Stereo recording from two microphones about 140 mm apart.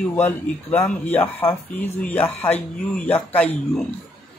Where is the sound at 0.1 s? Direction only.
15° left (ahead or behind).